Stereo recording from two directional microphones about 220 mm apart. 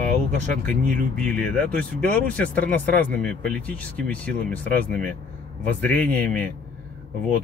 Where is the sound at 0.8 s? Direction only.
35° right (ahead or behind).